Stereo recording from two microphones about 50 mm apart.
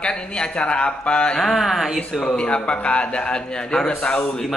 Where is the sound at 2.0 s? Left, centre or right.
Centre.